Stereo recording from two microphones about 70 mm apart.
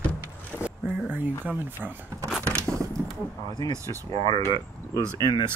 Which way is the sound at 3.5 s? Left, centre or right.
Left.